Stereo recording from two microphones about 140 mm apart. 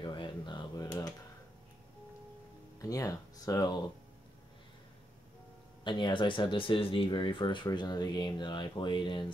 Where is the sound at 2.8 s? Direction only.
25° left (ahead or behind).